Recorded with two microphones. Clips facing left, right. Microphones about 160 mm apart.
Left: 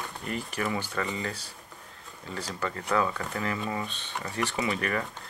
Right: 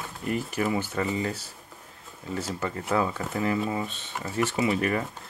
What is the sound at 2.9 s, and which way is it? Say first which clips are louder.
Speech: right 1 dB; 25° right (ahead or behind).